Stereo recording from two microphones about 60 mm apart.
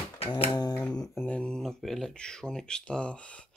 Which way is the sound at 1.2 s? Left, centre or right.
Left.